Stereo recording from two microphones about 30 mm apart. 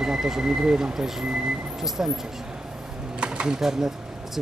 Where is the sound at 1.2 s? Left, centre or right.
Right.